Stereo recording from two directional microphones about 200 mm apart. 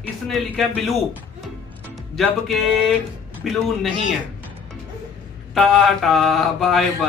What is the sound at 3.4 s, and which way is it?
Speech, centre (ahead or behind).